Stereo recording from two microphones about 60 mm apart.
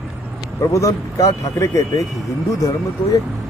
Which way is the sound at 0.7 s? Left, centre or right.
Left.